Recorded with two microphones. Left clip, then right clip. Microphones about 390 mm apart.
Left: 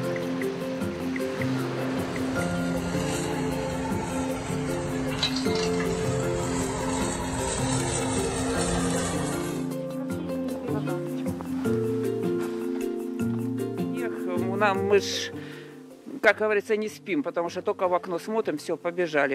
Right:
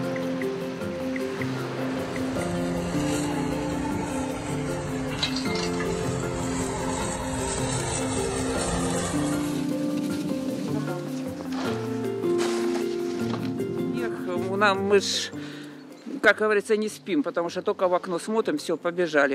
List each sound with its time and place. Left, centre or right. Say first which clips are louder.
5.2 s music: left 2 dB; centre
8.2 s music: even; centre
14.6 s music: right 1 dB; left
16.3 s speech: right 2 dB; left